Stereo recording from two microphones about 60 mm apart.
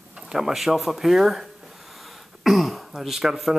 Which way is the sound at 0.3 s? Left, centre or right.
Centre.